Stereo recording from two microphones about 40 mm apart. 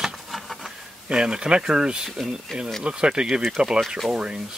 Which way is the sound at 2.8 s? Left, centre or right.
Right.